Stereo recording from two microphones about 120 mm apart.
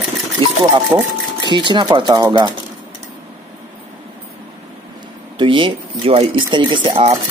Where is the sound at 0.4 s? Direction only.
45° right (ahead or behind); by 2.5 s 30° right (ahead or behind).